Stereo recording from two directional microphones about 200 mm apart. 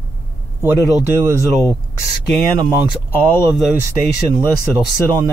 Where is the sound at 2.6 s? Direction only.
15° right (ahead or behind).